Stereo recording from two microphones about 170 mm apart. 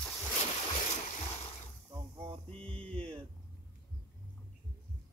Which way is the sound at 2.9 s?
35° right (ahead or behind).